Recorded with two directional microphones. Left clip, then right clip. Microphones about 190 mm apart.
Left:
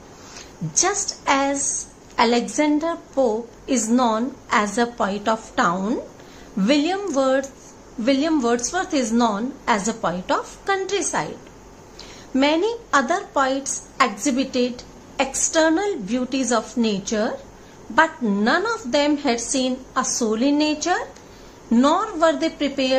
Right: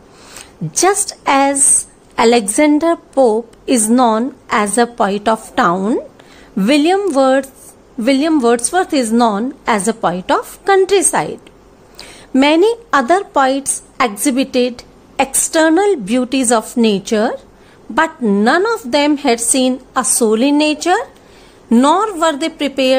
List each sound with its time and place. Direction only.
0.7 s a woman's voice: 55° right (ahead or behind)